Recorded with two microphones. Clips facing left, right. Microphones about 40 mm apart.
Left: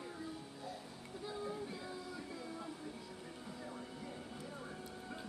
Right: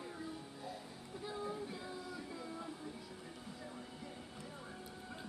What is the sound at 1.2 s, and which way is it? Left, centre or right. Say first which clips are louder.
Vehicle: even; centre.